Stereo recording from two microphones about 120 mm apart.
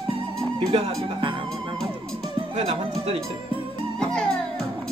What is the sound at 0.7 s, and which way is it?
Speech, 40° right (ahead or behind).